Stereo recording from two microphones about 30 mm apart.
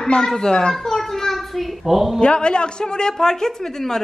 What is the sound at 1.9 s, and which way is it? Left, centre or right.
Speech, centre.